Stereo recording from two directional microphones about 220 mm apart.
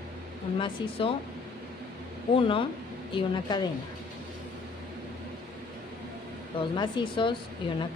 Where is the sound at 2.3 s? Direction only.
25° left (ahead or behind).